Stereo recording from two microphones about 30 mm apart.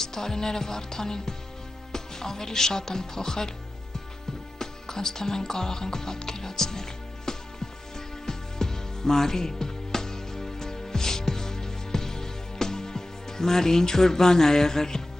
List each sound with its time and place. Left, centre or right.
0.0 s music: centre
1.9 s speech: centre
4.6 s speech: centre
8.3 s music: centre